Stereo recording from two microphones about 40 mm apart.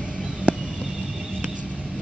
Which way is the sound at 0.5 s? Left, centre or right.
Right.